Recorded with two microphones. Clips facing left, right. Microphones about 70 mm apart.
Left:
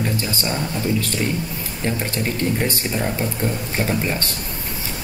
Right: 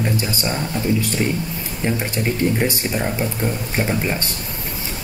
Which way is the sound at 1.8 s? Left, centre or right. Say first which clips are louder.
Right 2 dB; centre.